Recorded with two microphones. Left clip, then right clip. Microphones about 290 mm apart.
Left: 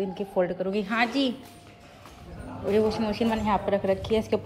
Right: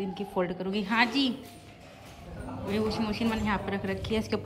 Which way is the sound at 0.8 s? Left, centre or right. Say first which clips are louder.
Right 1 dB; centre.